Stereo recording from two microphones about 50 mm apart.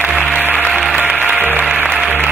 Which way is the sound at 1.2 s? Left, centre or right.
Right.